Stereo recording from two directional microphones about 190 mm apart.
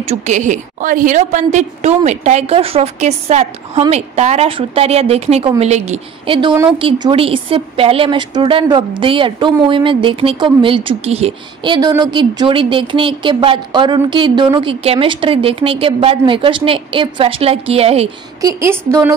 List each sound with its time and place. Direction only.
0.0 s a woman's voice: 35° right (ahead or behind)
18.4 s a woman's voice: 15° right (ahead or behind)